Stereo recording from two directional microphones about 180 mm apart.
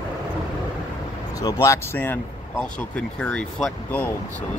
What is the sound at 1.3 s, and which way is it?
Speech, 20° left (ahead or behind).